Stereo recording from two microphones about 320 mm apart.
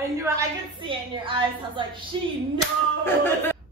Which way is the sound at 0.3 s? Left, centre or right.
Centre.